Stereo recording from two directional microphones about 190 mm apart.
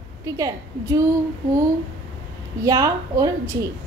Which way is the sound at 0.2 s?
15° right (ahead or behind).